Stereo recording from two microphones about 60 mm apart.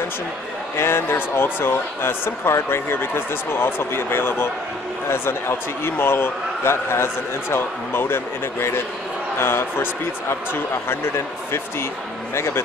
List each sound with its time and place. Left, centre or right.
0.7 s a man's voice: left